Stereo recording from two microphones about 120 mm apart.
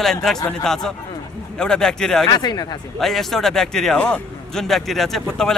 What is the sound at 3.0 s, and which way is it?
A man's voice, centre (ahead or behind).